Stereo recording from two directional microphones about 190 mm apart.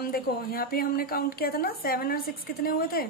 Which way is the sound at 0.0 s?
50° left (ahead or behind).